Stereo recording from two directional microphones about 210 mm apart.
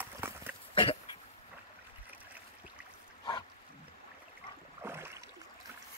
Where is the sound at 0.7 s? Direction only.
25° left (ahead or behind).